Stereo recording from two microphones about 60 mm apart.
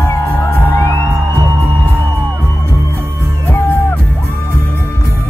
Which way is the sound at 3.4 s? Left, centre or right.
Left.